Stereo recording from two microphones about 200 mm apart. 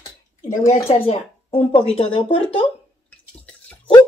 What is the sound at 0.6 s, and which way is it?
Speech, 35° left (ahead or behind).